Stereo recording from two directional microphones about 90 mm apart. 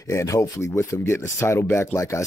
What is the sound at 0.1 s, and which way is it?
Speech, 35° left (ahead or behind).